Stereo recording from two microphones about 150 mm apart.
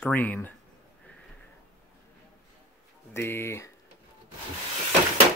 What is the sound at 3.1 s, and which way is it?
Speech, 15° left (ahead or behind).